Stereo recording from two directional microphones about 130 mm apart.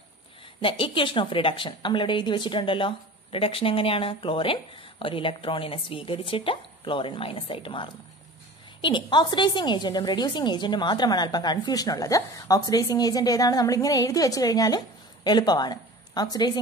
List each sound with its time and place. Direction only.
0.6 s a woman's voice: 45° left (ahead or behind)